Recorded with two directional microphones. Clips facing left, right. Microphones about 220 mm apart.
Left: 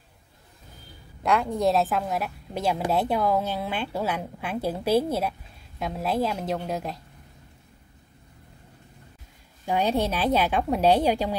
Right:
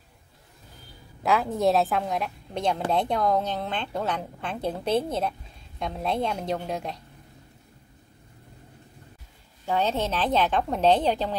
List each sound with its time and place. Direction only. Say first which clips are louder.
1.2 s a woman's voice: even; centre (ahead or behind)
9.7 s a woman's voice: left 2 dB; 15° left (ahead or behind)